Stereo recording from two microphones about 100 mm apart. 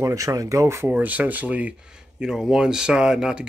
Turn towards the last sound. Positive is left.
turn(degrees=-5)  # may be behind; listen again after turning